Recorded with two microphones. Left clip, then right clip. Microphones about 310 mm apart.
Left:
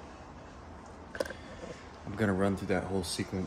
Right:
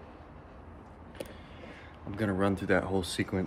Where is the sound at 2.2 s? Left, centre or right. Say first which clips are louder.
Even; centre.